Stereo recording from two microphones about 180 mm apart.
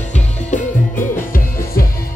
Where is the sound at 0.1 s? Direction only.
45° left (ahead or behind).